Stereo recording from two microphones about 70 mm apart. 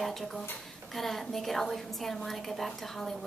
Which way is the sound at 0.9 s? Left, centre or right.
Centre.